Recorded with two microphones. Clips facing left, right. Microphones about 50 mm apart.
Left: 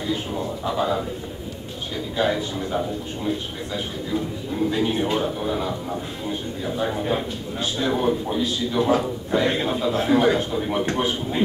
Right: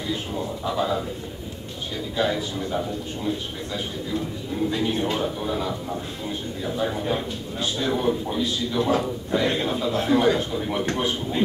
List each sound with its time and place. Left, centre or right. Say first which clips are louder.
0.1 s a man's voice: left 2 dB; centre
2.1 s a man's voice: left 2 dB; centre